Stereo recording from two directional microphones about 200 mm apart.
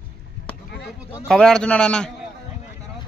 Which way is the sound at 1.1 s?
Centre (ahead or behind).